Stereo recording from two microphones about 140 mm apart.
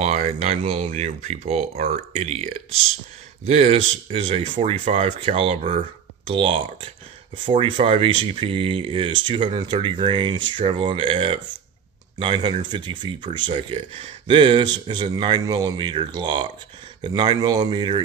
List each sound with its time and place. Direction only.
0.0 s speech: 55° right (ahead or behind); by 18.0 s 35° right (ahead or behind)